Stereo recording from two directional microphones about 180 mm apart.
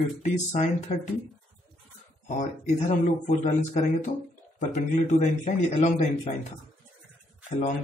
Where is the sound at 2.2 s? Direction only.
45° left (ahead or behind).